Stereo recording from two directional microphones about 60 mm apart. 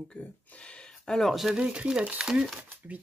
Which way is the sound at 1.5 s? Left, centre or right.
Centre.